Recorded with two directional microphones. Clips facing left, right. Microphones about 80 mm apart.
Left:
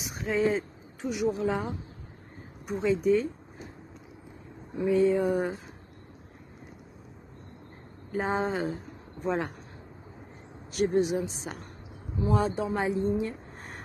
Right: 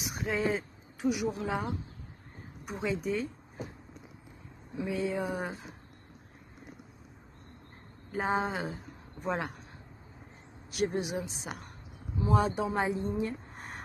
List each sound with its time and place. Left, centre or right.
0.0 s a woman's voice: centre
4.7 s a woman's voice: centre
8.1 s a woman's voice: centre
10.7 s a woman's voice: centre
12.2 s speech: centre
13.6 s a sound: centre